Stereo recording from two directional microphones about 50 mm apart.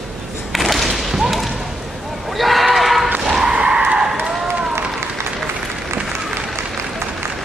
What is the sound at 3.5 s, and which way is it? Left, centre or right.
Skidding, centre.